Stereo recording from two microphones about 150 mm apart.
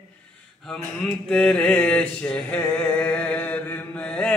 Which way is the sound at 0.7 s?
5° left (ahead or behind).